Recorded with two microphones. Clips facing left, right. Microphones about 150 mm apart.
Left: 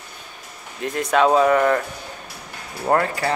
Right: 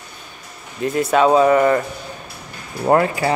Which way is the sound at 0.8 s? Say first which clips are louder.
Right 3 dB; 5° right (ahead or behind).